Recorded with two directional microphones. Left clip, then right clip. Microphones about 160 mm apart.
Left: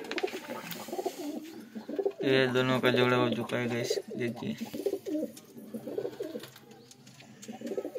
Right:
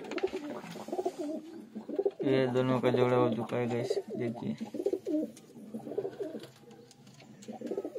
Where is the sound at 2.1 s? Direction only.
15° right (ahead or behind).